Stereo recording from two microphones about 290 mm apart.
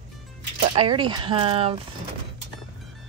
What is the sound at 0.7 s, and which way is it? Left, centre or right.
Speech, centre.